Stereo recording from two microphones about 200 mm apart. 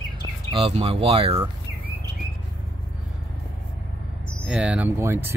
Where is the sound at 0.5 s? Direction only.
30° right (ahead or behind).